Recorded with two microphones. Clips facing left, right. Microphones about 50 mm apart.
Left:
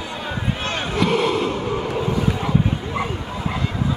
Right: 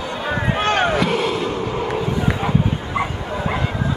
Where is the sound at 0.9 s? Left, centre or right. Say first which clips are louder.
Even; centre.